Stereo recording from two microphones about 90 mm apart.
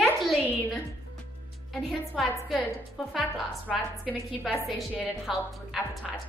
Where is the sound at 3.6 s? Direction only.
15° left (ahead or behind).